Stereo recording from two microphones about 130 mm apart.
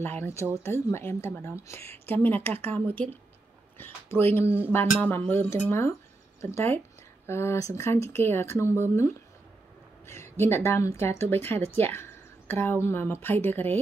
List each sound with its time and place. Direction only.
0.0 s a woman's voice: 15° left (ahead or behind)
3.7 s speech: 15° left (ahead or behind)
4.5 s speech: 15° right (ahead or behind)
4.7 s a woman's voice: 15° left (ahead or behind)